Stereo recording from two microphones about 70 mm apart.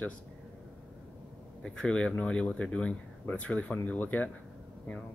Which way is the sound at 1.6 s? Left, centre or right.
Centre.